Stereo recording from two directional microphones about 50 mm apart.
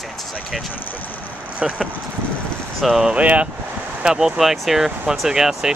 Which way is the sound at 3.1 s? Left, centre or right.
Right.